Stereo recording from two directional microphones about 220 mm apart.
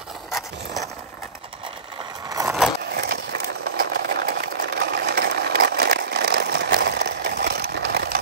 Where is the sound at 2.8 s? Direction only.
45° right (ahead or behind).